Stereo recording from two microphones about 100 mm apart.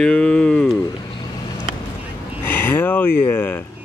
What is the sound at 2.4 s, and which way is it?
Speech, 20° left (ahead or behind).